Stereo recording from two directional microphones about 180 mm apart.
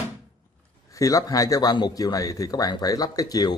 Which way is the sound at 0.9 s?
20° left (ahead or behind).